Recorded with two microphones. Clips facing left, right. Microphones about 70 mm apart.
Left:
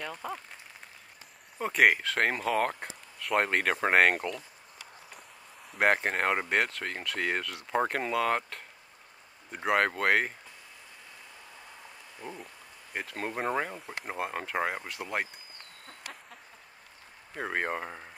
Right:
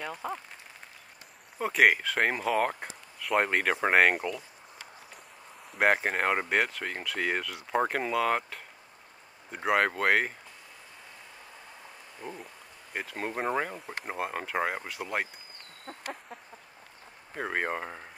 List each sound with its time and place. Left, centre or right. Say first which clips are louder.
0.0 s speech: right 2 dB; centre
1.6 s speech: right 1 dB; centre
5.7 s speech: right 1 dB; centre
12.2 s speech: right 1 dB; centre
15.9 s a sound: right 7 dB; right
17.4 s speech: right 1 dB; centre